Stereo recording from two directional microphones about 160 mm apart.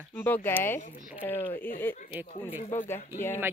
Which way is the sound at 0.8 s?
60° left (ahead or behind).